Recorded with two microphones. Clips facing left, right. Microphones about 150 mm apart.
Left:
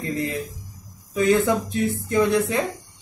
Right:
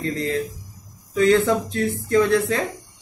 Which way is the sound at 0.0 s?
15° left (ahead or behind).